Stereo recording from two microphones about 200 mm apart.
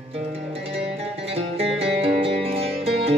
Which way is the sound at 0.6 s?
30° right (ahead or behind).